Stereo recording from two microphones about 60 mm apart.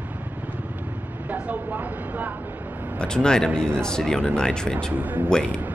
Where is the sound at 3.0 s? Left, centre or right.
Centre.